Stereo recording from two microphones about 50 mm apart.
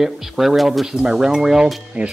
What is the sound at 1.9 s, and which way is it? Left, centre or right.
Speech, right.